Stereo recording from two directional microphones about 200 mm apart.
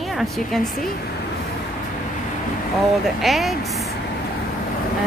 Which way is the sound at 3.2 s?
Centre (ahead or behind).